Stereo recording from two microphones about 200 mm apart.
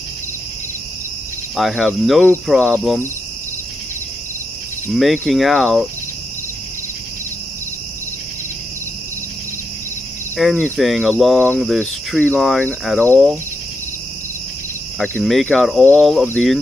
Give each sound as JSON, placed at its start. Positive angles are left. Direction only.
{"t": 1.6, "sound": "speech", "side_deg": 0}
{"t": 4.9, "sound": "speech", "side_deg": 0}
{"t": 10.3, "sound": "speech", "side_deg": 5}
{"t": 15.0, "sound": "speech", "side_deg": 0}